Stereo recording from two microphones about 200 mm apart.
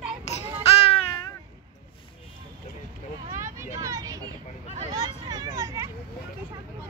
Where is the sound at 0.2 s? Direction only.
35° left (ahead or behind).